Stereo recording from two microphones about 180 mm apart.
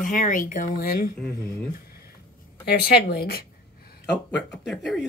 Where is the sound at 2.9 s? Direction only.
60° left (ahead or behind).